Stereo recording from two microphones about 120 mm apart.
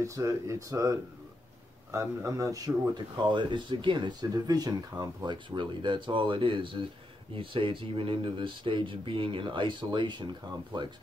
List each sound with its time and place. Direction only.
0.0 s speech: 25° right (ahead or behind)